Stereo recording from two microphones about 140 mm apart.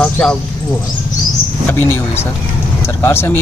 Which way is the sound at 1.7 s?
15° left (ahead or behind).